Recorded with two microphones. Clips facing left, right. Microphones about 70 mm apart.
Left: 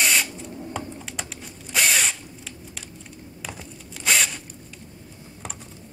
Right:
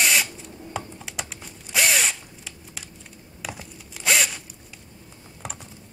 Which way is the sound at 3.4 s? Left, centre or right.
Centre.